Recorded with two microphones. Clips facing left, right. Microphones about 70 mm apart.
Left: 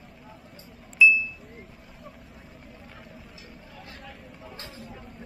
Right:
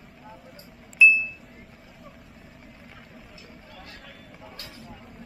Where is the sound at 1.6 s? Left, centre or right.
Centre.